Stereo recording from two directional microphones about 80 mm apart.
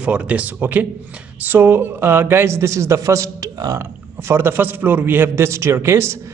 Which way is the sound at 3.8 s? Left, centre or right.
Right.